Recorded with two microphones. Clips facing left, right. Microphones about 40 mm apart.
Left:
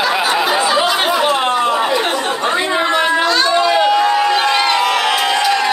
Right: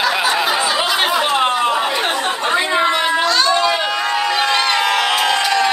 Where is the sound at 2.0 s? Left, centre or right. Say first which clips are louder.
Left 1 dB; centre.